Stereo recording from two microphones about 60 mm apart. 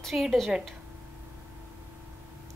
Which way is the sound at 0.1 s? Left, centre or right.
Centre.